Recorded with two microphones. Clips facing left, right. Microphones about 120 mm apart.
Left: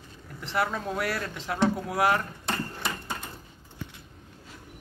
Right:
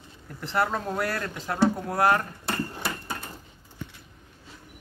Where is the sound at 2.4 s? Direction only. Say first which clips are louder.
Right 1 dB; 10° right (ahead or behind).